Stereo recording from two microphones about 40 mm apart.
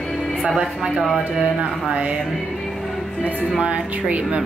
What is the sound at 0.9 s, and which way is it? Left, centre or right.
Speech, centre.